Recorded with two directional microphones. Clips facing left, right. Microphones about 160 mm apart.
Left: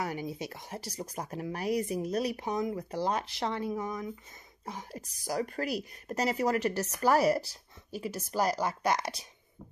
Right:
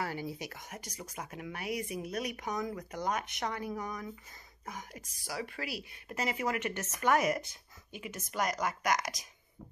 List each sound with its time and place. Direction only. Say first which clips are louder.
0.0 s speech: left 2 dB; 20° left (ahead or behind)